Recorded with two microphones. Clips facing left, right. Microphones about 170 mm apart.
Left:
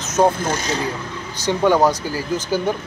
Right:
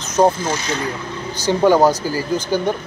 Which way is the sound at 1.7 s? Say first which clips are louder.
Right 2 dB; 5° right (ahead or behind).